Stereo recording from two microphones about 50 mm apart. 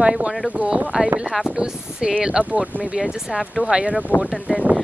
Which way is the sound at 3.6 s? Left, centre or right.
Centre.